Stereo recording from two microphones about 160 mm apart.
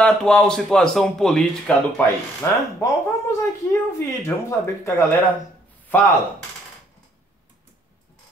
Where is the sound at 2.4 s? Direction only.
15° left (ahead or behind).